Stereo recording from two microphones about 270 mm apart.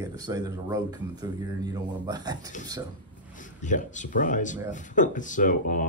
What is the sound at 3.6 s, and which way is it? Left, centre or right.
Speech, left.